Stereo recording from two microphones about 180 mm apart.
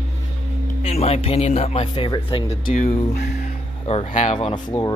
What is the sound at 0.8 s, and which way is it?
Speech, 35° left (ahead or behind).